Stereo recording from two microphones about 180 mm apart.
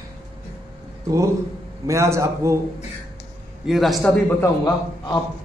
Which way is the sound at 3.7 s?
Centre (ahead or behind).